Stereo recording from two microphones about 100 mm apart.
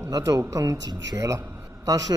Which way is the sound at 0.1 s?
40° right (ahead or behind).